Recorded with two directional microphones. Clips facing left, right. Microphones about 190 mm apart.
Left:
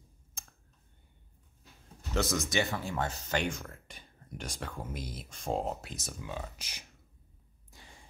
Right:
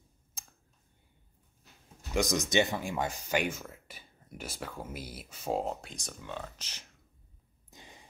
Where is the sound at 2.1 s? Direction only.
15° right (ahead or behind); by 6.8 s 10° left (ahead or behind).